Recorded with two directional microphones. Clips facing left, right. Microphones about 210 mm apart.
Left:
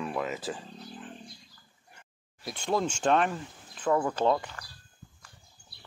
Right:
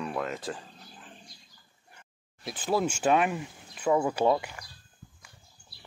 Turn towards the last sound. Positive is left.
turn(degrees=-10)  # may be behind; listen again after turning